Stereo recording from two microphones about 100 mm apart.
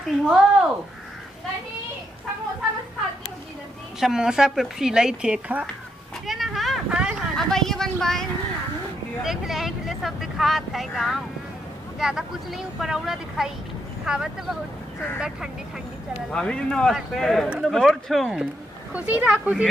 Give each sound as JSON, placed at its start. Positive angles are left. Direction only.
{"t": 0.0, "sound": "a woman's voice", "side_deg": -5}
{"t": 4.0, "sound": "speech", "side_deg": -5}
{"t": 6.2, "sound": "a sound", "side_deg": 0}
{"t": 6.9, "sound": "speech", "side_deg": -10}
{"t": 7.3, "sound": "speech", "side_deg": 5}
{"t": 16.3, "sound": "speech", "side_deg": 10}
{"t": 18.9, "sound": "speech", "side_deg": -15}